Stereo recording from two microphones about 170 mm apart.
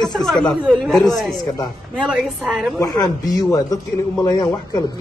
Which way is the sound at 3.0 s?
20° left (ahead or behind).